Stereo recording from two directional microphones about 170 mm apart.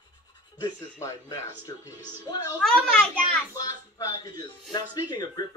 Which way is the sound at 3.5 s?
20° left (ahead or behind).